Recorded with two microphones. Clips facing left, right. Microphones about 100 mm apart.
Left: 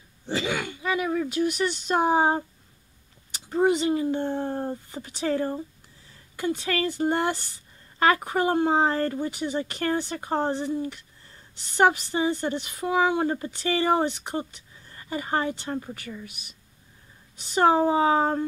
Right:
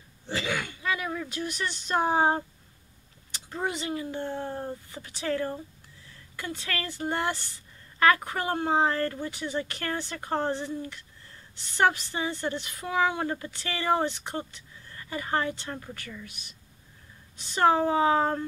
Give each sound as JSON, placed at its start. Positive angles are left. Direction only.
{"t": 0.3, "sound": "speech", "side_deg": 20}